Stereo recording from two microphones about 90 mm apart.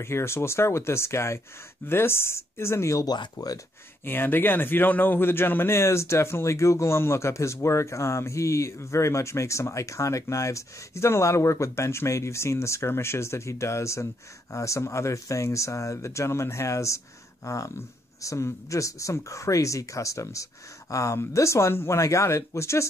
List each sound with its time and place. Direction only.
0.0 s speech: 30° left (ahead or behind)
3.1 s speech: 45° left (ahead or behind)
4.0 s speech: 25° left (ahead or behind)